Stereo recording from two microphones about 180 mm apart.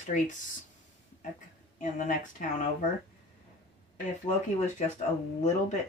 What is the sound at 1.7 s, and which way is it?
Speech, 45° left (ahead or behind).